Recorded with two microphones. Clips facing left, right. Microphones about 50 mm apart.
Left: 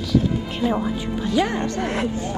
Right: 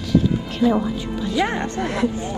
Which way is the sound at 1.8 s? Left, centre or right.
Left.